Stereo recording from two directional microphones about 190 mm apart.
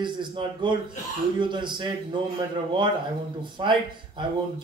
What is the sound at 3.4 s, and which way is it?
Speech, 25° right (ahead or behind).